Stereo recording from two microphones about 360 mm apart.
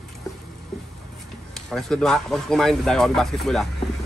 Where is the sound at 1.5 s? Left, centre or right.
Centre.